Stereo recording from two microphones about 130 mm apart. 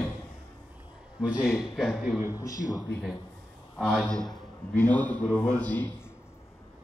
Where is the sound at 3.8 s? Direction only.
Centre (ahead or behind).